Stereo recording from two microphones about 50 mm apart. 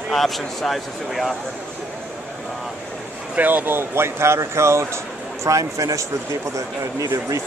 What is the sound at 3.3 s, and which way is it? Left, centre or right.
Speech, right.